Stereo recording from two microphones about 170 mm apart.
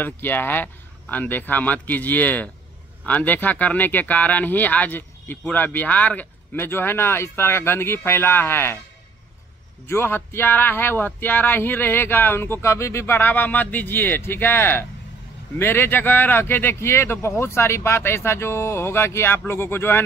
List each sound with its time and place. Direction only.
0.0 s speech: 10° left (ahead or behind)
9.8 s speech: 15° left (ahead or behind)